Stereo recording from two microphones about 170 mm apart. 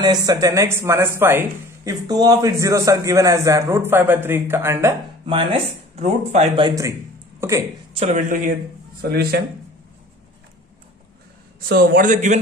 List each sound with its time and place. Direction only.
0.0 s speech: 25° right (ahead or behind)
5.2 s speech: 30° right (ahead or behind)
6.7 s speech: 20° right (ahead or behind)
7.9 s speech: 40° right (ahead or behind)
9.0 s a man's voice: 65° right (ahead or behind)
11.6 s a man's voice: 60° right (ahead or behind)